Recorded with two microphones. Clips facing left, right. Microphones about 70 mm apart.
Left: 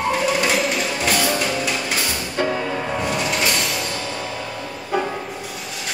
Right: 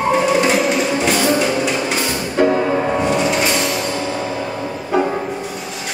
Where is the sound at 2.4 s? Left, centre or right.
Right.